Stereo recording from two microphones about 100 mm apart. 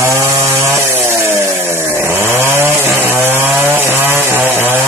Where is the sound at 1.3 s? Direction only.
25° right (ahead or behind).